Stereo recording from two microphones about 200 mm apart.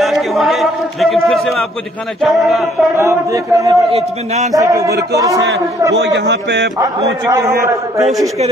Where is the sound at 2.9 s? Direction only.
15° right (ahead or behind).